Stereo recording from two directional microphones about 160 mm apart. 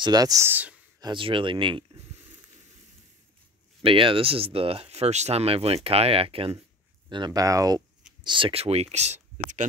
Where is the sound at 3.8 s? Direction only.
35° right (ahead or behind).